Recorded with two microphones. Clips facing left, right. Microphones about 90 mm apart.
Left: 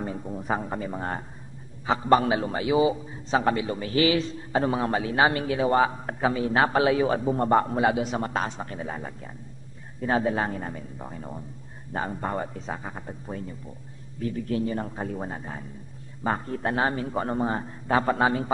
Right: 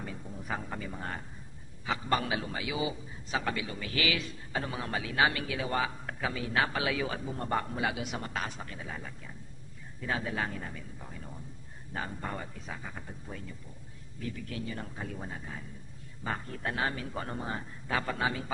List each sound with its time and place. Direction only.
0.0 s a man's voice: 35° left (ahead or behind)